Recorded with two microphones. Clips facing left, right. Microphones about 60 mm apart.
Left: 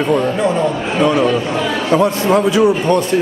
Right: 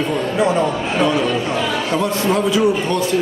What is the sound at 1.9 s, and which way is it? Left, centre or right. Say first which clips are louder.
Speech: left 7 dB; left.